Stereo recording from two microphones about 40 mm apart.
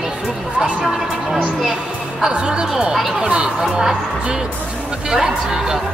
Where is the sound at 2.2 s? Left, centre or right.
Right.